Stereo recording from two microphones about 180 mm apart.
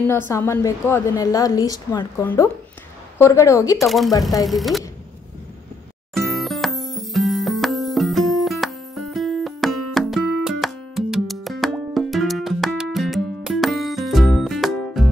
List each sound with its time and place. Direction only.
0.3 s a woman's voice: 15° left (ahead or behind)
3.7 s speech: centre (ahead or behind)
6.1 s music: centre (ahead or behind)